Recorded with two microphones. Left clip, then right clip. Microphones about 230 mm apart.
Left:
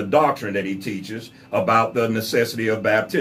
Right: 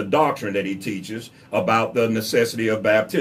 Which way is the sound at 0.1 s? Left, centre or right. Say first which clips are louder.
Left 2 dB; centre.